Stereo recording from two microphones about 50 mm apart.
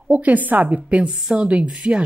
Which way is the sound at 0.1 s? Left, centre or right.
Right.